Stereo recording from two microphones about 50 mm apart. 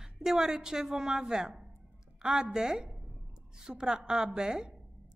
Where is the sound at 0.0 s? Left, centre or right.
Centre.